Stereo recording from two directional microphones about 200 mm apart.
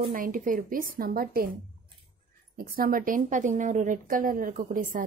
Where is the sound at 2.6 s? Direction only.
45° right (ahead or behind).